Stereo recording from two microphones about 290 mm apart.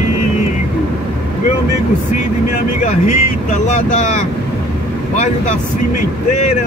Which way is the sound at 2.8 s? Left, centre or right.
Left.